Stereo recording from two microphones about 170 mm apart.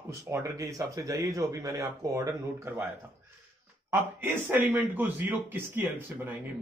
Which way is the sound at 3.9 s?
10° right (ahead or behind).